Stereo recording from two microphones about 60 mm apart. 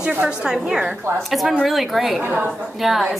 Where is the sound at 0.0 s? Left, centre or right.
Centre.